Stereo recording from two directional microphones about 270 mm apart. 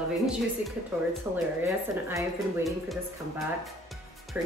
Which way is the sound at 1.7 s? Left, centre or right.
Centre.